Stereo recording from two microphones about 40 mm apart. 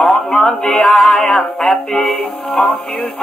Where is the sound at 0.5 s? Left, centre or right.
Centre.